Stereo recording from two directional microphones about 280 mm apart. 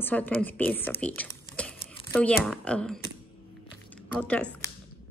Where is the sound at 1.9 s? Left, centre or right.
Centre.